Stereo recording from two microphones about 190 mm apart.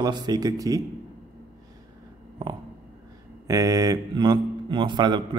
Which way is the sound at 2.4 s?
20° right (ahead or behind).